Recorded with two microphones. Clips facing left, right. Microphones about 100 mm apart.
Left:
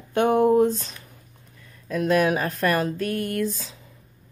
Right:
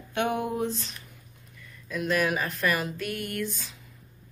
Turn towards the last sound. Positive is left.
turn(degrees=35)  # may be behind; listen again after turning